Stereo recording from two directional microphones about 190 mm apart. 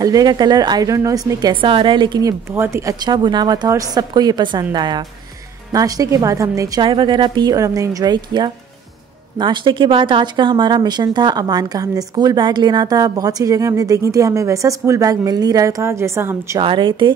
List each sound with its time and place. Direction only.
0.0 s speech: 20° right (ahead or behind)
16.5 s speech: 25° right (ahead or behind)